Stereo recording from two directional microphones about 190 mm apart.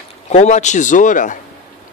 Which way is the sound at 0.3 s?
35° left (ahead or behind).